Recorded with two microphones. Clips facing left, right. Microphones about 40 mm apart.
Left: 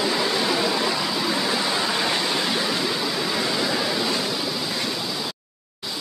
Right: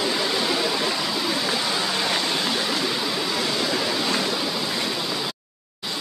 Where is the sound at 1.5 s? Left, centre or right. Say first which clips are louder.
Left 1 dB; centre.